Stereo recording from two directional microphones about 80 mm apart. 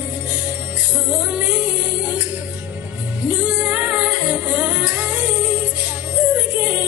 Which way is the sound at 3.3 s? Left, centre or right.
Centre.